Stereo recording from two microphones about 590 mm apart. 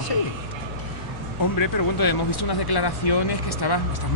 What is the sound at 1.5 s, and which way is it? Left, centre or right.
Speech, left.